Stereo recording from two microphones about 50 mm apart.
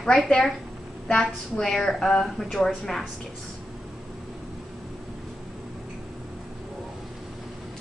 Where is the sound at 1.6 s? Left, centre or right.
Centre.